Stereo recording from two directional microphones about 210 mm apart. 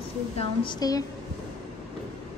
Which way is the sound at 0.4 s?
25° left (ahead or behind).